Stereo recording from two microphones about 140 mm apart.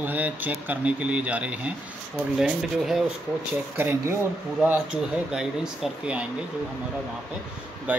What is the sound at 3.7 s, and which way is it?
Speech, 15° right (ahead or behind).